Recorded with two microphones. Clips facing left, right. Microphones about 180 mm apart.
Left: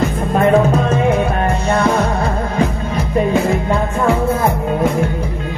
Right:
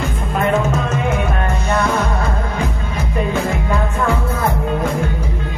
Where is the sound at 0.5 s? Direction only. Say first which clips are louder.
Left 5 dB; 35° left (ahead or behind).